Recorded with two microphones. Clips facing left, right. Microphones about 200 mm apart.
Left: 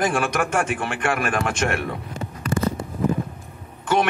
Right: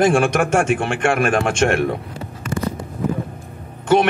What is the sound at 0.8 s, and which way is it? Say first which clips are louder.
Speech: right 5 dB; 25° right (ahead or behind).